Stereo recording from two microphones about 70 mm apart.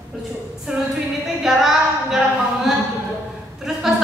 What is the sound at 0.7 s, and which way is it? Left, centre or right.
Music, centre.